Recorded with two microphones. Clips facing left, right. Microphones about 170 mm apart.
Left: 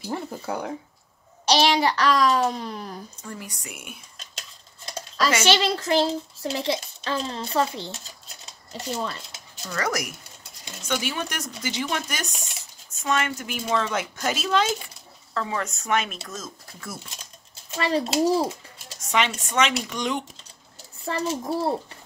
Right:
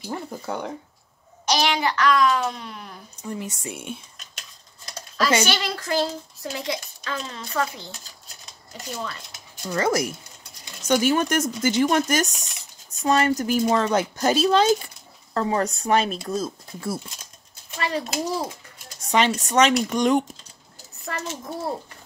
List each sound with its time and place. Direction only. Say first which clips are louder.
0.1 s speech: even; centre (ahead or behind)
1.5 s a child's voice: left 2 dB; 30° left (ahead or behind)
3.2 s speech: right 6 dB; 20° right (ahead or behind)
5.4 s speech: left 4 dB; 25° left (ahead or behind)
9.7 s speech: right 5 dB; 25° right (ahead or behind)
10.9 s speech: right 9 dB; 45° right (ahead or behind)
17.6 s speech: left 3 dB; 30° left (ahead or behind)
18.9 s speech: right 4 dB; 35° right (ahead or behind)
21.0 s a child's voice: left 5 dB; 30° left (ahead or behind)